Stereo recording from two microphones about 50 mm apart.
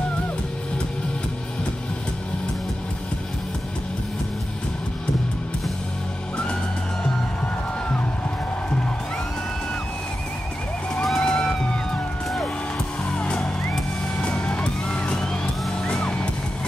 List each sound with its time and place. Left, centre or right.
11.1 s music: centre
13.1 s music: left